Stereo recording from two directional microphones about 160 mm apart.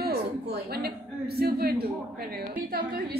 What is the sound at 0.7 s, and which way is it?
A man's voice, 80° right.